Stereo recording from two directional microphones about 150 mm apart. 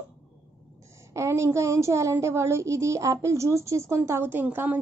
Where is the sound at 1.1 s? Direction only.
20° right (ahead or behind).